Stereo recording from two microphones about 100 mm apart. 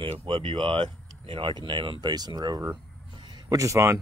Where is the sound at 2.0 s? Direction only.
45° right (ahead or behind).